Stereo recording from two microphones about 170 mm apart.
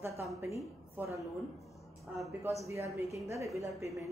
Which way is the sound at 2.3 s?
15° right (ahead or behind).